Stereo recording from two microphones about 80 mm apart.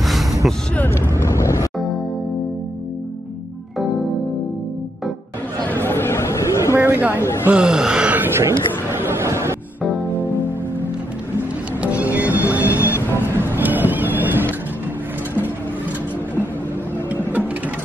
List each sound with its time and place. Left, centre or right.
0.0 s a sound: centre
0.7 s speech: left
1.2 s music: left
5.9 s chatter: left
6.7 s a sound: right
7.4 s speech: centre
8.2 s speech: right
9.0 s a sound: right
11.8 s music: centre
13.1 s cat: right